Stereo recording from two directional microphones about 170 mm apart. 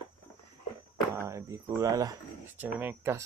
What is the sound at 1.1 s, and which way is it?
Speech, 15° right (ahead or behind).